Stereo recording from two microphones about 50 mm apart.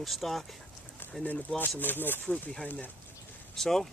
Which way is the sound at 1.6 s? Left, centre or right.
Left.